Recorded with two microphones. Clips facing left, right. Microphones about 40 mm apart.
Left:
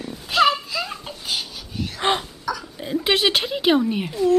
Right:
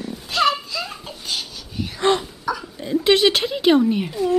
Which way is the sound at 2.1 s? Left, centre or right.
Left.